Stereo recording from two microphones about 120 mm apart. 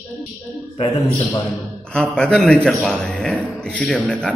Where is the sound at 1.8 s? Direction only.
5° left (ahead or behind).